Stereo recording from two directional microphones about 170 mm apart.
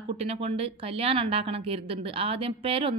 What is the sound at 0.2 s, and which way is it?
A woman's voice, 35° right (ahead or behind).